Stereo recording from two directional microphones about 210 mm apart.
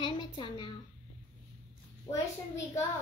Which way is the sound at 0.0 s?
20° left (ahead or behind).